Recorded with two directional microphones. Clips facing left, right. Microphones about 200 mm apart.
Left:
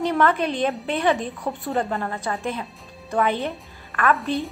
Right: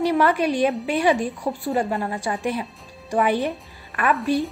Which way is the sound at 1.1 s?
Centre (ahead or behind).